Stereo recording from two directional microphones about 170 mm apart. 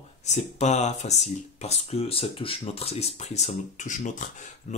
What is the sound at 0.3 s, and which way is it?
Speech, 45° left (ahead or behind).